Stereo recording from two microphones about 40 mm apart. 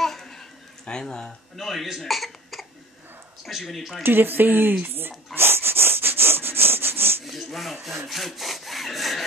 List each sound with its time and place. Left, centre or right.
0.0 s a sound: centre
0.8 s speech: centre
1.6 s speech: centre
1.9 s cough: centre
3.4 s speech: centre
4.0 s speech: right
5.3 s sawing: right
7.2 s a sound: centre
8.1 s sawing: centre